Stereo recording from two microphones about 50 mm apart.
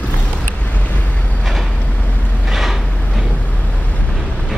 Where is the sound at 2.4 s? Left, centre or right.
Centre.